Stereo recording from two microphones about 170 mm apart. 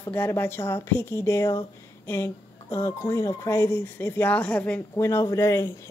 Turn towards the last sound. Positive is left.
turn(degrees=15)  # may be behind; listen again after turning